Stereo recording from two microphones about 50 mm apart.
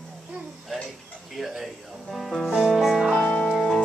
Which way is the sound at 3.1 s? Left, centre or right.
Left.